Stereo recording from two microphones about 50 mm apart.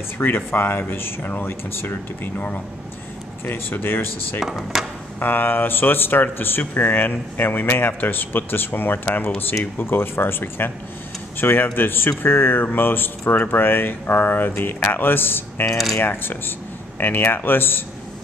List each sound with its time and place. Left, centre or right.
0.2 s speech: left
4.4 s speech: centre
5.2 s speech: left